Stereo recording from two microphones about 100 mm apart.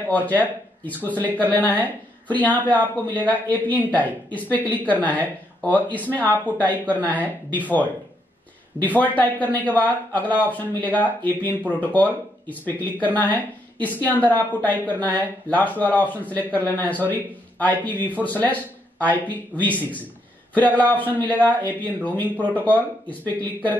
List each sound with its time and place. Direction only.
0.1 s a woman's voice: 15° left (ahead or behind)
8.8 s speech: 15° left (ahead or behind)
22.2 s speech: 20° right (ahead or behind)
22.6 s speech: 15° left (ahead or behind)